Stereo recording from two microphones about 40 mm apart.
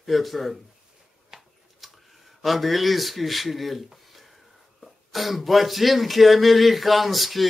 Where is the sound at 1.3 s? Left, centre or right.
Centre.